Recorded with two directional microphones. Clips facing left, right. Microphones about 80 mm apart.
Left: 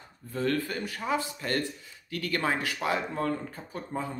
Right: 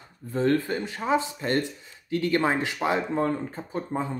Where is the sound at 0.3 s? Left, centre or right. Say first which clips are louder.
Right 5 dB; right.